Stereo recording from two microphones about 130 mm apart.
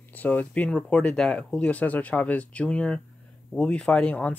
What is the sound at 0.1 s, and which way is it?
Speech, 10° left (ahead or behind).